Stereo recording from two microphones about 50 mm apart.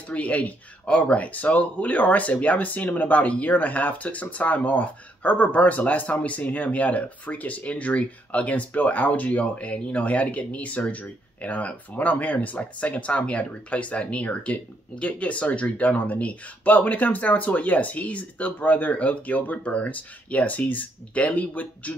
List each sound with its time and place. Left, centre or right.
0.1 s speech: left